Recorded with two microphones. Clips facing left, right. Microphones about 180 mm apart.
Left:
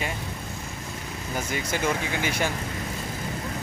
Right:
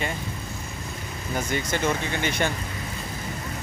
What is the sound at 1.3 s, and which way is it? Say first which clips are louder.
Speech: right 2 dB; 5° left (ahead or behind).